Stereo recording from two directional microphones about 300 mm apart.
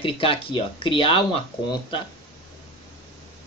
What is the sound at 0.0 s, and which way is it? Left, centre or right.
Speech, centre.